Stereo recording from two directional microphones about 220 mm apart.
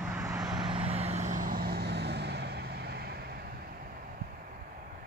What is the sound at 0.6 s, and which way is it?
Vehicle, 25° right (ahead or behind).